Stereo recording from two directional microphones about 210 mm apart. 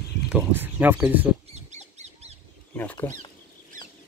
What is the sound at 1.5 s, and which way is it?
Bird, 30° right (ahead or behind).